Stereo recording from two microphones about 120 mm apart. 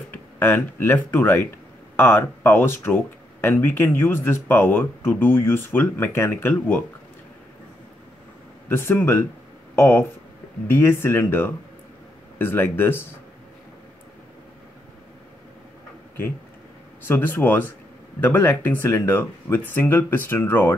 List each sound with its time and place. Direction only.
0.1 s speech: 15° left (ahead or behind)
8.6 s speech: 20° left (ahead or behind)
17.1 s speech: 15° left (ahead or behind)